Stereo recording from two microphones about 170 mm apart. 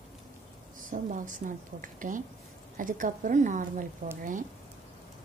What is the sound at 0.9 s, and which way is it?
Speech, 50° right (ahead or behind).